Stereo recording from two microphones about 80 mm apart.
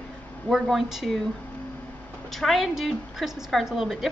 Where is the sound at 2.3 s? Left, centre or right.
Centre.